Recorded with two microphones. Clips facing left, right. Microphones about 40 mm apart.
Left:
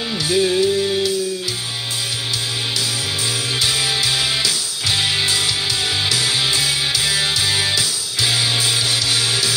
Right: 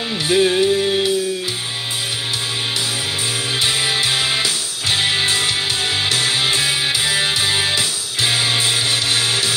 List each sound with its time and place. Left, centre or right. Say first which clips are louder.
0.3 s music: right 2 dB; right
3.6 s music: right 1 dB; right